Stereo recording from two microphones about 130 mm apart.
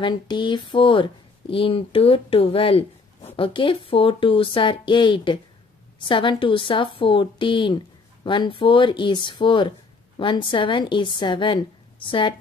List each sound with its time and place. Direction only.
0.0 s a woman's voice: 35° left (ahead or behind)